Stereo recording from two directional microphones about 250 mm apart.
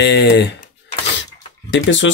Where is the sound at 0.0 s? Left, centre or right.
Left.